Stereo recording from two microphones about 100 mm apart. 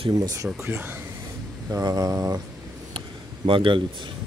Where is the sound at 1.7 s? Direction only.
40° right (ahead or behind).